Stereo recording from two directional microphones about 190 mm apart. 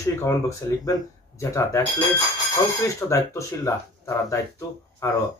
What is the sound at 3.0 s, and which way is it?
Speech, 15° left (ahead or behind).